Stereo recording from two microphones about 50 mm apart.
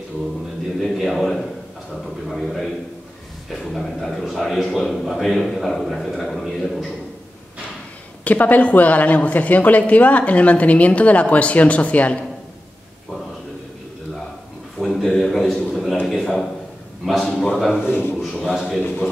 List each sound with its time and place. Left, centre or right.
0.8 s a sound: centre
3.4 s a man's voice: centre
8.2 s a woman's voice: left
14.8 s a man's voice: centre
17.8 s a man's voice: left
18.2 s a man's voice: centre